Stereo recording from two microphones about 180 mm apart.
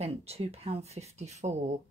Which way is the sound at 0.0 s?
35° right (ahead or behind).